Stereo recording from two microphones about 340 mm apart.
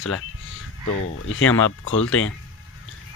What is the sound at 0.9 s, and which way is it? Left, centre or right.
Speech, left.